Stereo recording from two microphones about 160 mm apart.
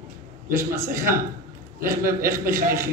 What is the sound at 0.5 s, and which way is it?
Speech, 15° right (ahead or behind).